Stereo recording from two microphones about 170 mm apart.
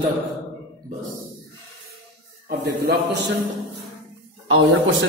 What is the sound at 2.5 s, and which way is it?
Speech, 70° right (ahead or behind).